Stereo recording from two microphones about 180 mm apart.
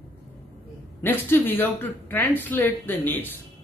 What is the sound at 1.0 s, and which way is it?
Speech, 10° left (ahead or behind).